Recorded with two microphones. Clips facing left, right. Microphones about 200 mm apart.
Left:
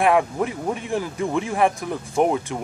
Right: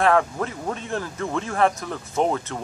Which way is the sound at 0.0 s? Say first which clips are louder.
Left 1 dB; 15° left (ahead or behind).